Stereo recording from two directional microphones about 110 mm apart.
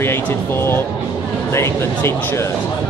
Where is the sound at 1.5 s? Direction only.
25° left (ahead or behind).